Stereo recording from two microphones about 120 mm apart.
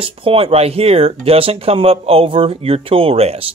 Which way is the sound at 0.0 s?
50° right (ahead or behind).